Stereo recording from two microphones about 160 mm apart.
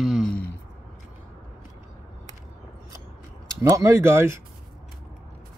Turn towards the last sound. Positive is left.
turn(degrees=-15)  # may be behind; listen again after turning